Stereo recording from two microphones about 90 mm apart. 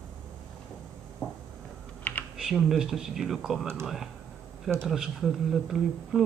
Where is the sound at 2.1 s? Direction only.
20° left (ahead or behind).